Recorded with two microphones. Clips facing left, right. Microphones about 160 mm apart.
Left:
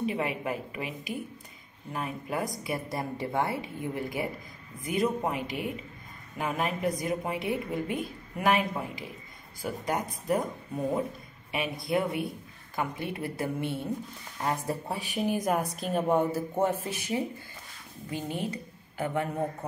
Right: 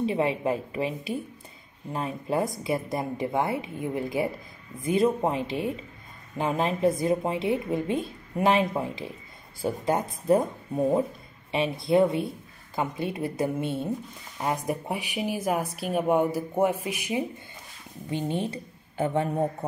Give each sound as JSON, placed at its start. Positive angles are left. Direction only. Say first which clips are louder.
{"t": 0.0, "sound": "a woman's voice", "louder": "right 5 dB", "side_deg": -25}
{"t": 18.1, "sound": "a woman's voice", "louder": "right 4 dB", "side_deg": -25}